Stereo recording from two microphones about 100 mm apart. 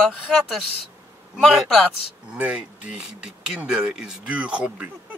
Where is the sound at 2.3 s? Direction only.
10° right (ahead or behind).